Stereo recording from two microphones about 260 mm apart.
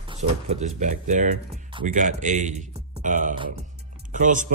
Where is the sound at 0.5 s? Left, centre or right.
Right.